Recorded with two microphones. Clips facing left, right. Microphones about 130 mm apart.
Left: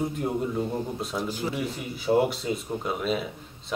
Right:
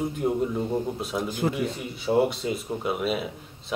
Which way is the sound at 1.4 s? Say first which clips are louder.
Right 8 dB; 50° right (ahead or behind).